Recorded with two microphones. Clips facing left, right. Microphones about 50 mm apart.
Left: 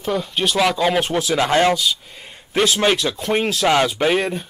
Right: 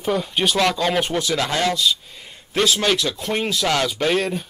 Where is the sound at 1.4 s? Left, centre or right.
Left.